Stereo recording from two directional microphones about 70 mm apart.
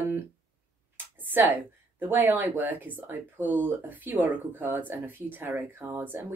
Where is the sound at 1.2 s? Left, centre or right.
Right.